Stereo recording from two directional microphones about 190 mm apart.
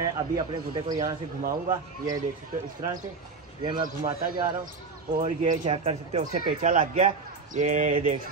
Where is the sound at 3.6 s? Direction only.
25° right (ahead or behind).